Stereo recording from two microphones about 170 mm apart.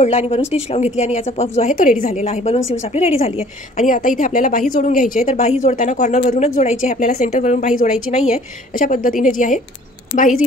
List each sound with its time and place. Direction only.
0.3 s a woman's voice: 40° left (ahead or behind)